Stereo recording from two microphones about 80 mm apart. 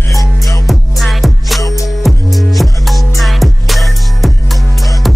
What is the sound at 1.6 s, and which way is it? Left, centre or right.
Music, left.